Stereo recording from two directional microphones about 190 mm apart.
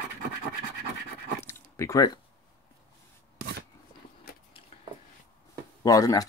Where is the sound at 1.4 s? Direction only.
15° left (ahead or behind).